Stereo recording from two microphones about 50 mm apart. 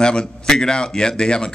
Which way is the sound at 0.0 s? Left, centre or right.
Centre.